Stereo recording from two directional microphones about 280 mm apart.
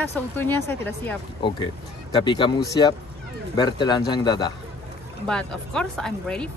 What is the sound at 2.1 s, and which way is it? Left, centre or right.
Speech, centre.